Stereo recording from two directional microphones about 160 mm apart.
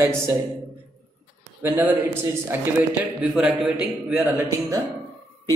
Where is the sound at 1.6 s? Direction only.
15° right (ahead or behind).